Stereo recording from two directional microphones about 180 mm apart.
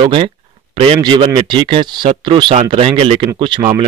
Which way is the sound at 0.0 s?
30° right (ahead or behind).